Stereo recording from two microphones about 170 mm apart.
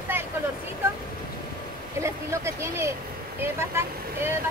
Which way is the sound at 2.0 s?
15° right (ahead or behind).